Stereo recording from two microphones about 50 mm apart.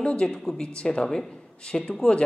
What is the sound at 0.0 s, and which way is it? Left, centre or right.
A man's voice, left.